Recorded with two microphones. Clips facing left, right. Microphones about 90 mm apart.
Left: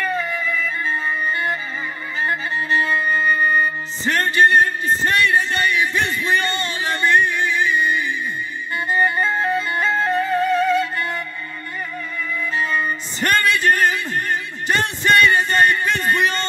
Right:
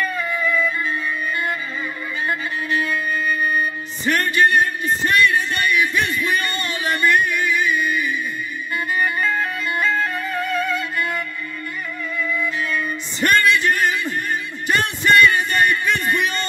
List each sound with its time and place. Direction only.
0.0 s music: 30° left (ahead or behind)
12.5 s music: 35° left (ahead or behind)